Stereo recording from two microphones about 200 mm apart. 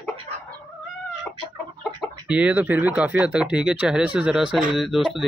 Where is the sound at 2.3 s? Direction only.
5° right (ahead or behind).